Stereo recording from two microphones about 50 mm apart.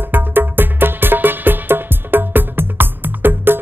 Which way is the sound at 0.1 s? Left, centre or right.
Right.